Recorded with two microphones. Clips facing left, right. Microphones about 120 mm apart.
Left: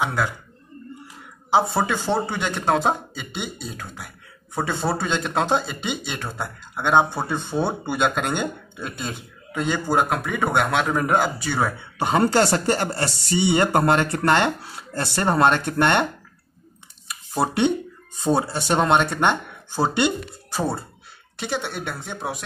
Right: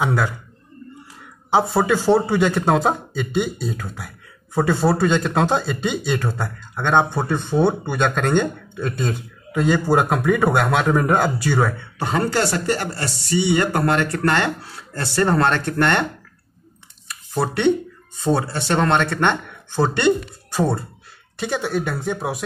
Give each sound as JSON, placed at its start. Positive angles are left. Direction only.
{"t": 0.0, "sound": "a man's voice", "side_deg": 0}
{"t": 1.5, "sound": "speech", "side_deg": 0}
{"t": 12.0, "sound": "speech", "side_deg": 25}
{"t": 17.1, "sound": "speech", "side_deg": 15}